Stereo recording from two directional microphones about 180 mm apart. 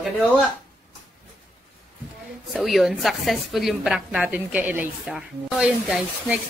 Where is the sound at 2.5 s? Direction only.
Centre (ahead or behind).